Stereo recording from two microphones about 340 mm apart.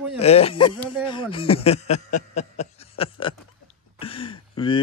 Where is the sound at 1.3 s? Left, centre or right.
Centre.